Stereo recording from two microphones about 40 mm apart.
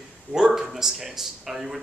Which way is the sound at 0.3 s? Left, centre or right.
Centre.